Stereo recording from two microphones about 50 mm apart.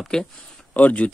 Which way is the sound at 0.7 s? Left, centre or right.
Left.